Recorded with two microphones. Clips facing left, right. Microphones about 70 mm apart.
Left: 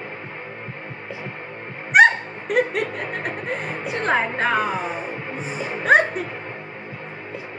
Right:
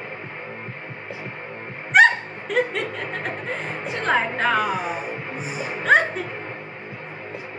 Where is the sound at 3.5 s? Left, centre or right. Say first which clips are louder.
Left 1 dB; centre.